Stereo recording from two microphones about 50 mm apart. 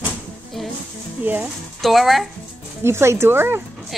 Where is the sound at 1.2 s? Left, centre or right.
Right.